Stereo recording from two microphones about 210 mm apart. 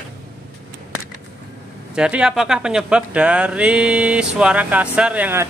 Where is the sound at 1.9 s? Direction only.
5° right (ahead or behind).